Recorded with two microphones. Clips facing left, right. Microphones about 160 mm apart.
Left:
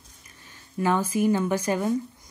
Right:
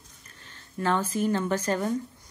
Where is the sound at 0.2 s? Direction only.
10° left (ahead or behind).